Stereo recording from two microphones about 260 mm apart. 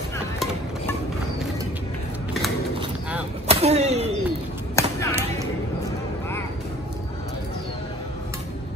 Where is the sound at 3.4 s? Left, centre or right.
Right.